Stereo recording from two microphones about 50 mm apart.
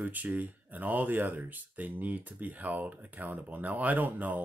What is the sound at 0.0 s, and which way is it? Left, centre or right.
Speech, right.